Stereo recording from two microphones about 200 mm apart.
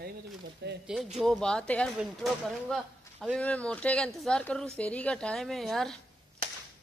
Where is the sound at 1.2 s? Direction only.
Centre (ahead or behind).